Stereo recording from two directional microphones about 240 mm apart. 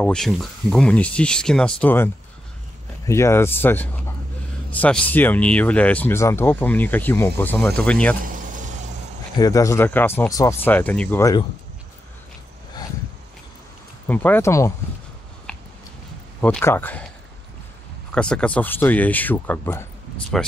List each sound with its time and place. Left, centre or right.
0.0 s speech: centre
3.1 s speech: centre
8.2 s vehicle: right
9.4 s speech: centre
14.0 s speech: centre
15.5 s a sound: centre
16.3 s speech: centre
18.1 s speech: centre